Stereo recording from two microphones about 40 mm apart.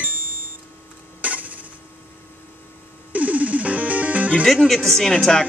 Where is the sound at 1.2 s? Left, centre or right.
Right.